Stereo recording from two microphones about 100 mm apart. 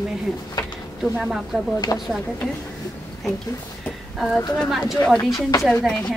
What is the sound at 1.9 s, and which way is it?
Speech, 35° left (ahead or behind).